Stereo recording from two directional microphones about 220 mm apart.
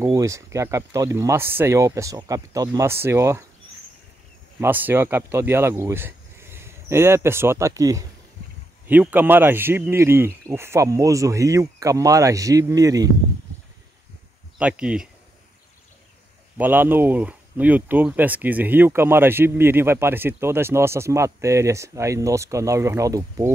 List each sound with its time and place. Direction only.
0.0 s speech: 15° right (ahead or behind)
4.6 s speech: 10° right (ahead or behind)
14.6 s speech: 5° right (ahead or behind)
16.5 s speech: 10° right (ahead or behind)